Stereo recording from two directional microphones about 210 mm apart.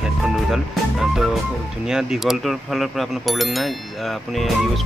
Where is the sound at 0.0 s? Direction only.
Centre (ahead or behind).